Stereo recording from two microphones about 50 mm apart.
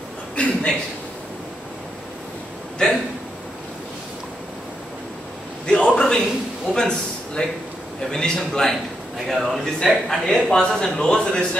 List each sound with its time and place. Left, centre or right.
0.4 s a man's voice: left
5.7 s a sound: centre
8.1 s a man's voice: centre